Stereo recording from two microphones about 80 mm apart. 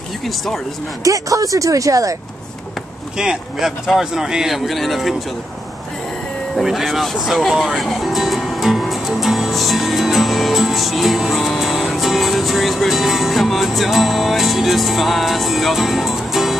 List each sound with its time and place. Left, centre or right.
0.2 s speech: centre
1.0 s speech: right
3.2 s speech: centre
6.6 s speech: centre